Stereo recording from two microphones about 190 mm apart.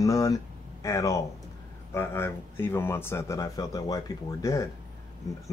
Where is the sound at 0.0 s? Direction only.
15° left (ahead or behind).